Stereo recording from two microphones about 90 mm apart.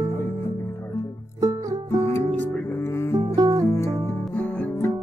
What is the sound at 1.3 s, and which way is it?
Music, 40° right (ahead or behind).